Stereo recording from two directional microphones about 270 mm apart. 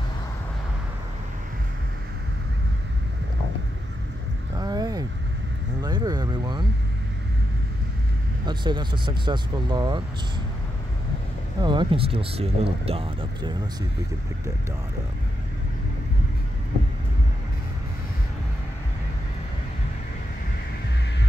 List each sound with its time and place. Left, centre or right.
4.6 s a sound: centre
8.5 s speech: centre
11.6 s speech: centre